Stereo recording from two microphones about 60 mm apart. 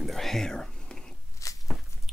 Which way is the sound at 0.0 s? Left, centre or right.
Centre.